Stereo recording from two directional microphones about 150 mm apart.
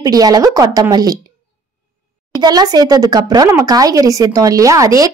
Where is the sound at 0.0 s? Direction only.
25° right (ahead or behind).